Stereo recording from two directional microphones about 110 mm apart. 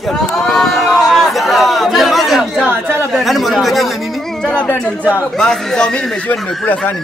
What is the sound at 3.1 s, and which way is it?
Speech, centre (ahead or behind).